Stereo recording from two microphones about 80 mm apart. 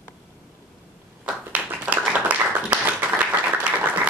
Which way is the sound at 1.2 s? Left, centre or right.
Centre.